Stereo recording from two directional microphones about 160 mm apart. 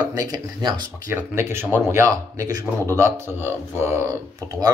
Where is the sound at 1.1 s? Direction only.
15° right (ahead or behind).